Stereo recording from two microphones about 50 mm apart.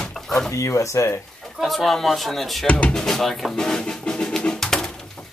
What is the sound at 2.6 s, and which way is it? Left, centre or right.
Speech, left.